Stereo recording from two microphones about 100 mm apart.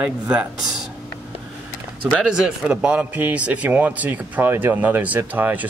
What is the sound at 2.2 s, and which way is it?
A man's voice, 5° right (ahead or behind).